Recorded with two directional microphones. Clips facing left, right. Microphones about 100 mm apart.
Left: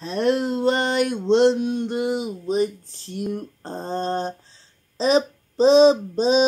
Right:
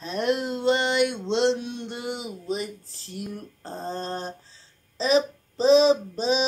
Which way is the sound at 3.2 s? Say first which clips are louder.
Left 8 dB; 35° left (ahead or behind).